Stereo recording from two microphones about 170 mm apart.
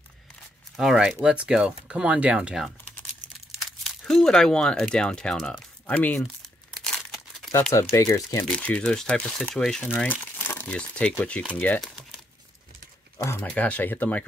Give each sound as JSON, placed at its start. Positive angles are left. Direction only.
{"t": 0.7, "sound": "speech", "side_deg": -5}
{"t": 3.8, "sound": "speech", "side_deg": 0}
{"t": 6.7, "sound": "crumpling", "side_deg": 5}
{"t": 7.7, "sound": "speech", "side_deg": 20}
{"t": 13.2, "sound": "speech", "side_deg": 10}